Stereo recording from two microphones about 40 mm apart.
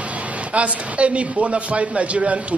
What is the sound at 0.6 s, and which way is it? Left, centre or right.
Speech, right.